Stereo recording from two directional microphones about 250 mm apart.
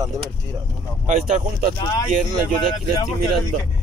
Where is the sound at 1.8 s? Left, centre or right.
Centre.